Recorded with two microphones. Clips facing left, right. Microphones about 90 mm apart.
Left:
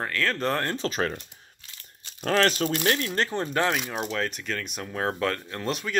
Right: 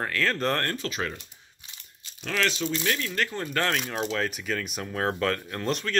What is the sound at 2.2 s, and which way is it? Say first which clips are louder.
Speech: left 5 dB; 40° left (ahead or behind).